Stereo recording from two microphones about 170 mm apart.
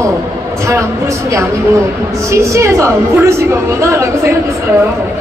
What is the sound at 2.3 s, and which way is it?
A woman's voice, 15° right (ahead or behind).